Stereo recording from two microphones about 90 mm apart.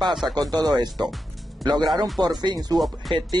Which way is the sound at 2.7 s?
Centre (ahead or behind).